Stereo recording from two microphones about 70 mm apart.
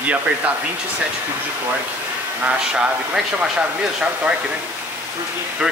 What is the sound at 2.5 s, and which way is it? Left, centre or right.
Speech, centre.